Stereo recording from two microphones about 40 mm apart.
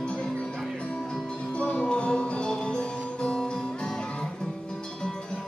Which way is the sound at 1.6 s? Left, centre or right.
Left.